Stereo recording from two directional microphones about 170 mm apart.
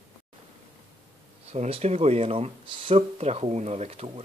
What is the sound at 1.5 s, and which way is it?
Speech, 40° right (ahead or behind).